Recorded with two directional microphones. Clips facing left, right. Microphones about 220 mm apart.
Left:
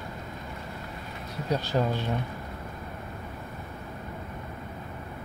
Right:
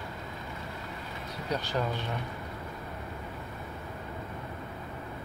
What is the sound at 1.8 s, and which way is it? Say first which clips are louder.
Speech: left 5 dB; 30° left (ahead or behind).